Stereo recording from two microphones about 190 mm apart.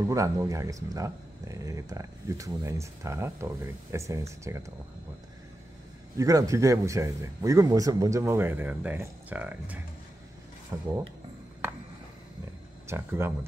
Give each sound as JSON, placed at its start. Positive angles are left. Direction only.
{"t": 0.0, "sound": "speech", "side_deg": -15}
{"t": 6.1, "sound": "speech", "side_deg": -15}
{"t": 12.8, "sound": "speech", "side_deg": -15}